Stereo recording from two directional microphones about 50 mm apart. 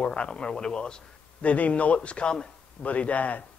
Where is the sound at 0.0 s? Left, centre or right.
Left.